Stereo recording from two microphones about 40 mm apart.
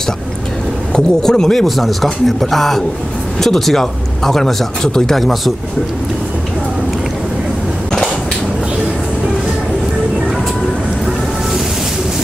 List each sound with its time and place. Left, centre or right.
0.9 s speech: centre
1.8 s speech: centre